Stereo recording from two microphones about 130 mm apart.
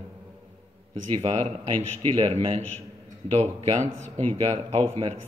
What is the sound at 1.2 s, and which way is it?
A man's voice, 45° right (ahead or behind).